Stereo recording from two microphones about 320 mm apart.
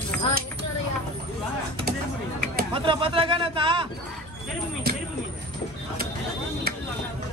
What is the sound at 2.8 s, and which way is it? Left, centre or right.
Speech, centre.